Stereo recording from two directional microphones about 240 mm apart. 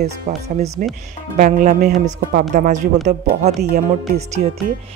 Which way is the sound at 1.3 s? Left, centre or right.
Right.